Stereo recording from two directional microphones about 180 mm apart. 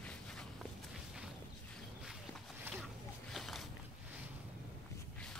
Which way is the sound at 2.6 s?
Centre (ahead or behind).